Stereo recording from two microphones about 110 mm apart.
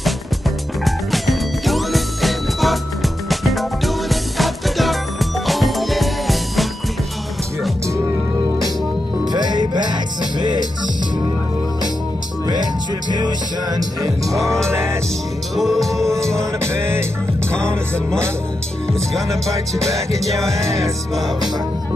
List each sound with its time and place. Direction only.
0.8 s music: centre (ahead or behind)
9.3 s music: 40° right (ahead or behind)
13.1 s music: 40° right (ahead or behind)
15.5 s music: centre (ahead or behind)
16.3 s music: 25° right (ahead or behind)